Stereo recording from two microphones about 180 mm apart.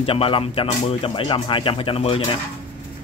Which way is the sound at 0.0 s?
30° left (ahead or behind).